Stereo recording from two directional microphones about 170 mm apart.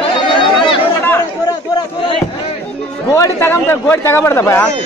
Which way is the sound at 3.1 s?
15° left (ahead or behind).